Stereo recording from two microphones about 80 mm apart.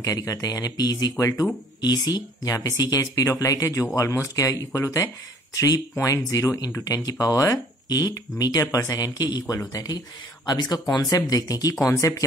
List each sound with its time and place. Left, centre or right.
0.0 s speech: left